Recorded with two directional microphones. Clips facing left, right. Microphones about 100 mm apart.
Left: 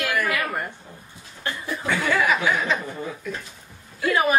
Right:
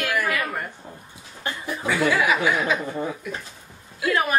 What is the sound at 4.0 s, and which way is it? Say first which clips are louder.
Speech: left 2 dB; 5° left (ahead or behind).